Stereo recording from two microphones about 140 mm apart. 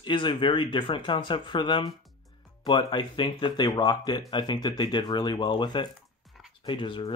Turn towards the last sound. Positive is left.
turn(degrees=35)  # may be behind; listen again after turning